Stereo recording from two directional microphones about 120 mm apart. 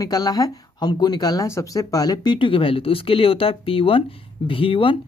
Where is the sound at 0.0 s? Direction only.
30° left (ahead or behind).